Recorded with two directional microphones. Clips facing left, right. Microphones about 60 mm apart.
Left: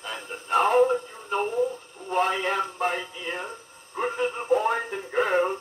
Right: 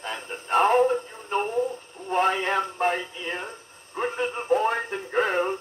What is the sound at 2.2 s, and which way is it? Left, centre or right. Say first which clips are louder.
Speech: right 2 dB; right.